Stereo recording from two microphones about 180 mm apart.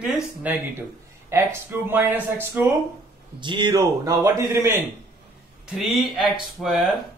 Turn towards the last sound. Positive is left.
turn(degrees=0)  # may be behind; listen again after turning